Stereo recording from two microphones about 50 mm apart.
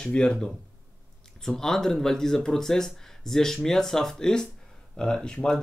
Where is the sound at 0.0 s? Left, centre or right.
Centre.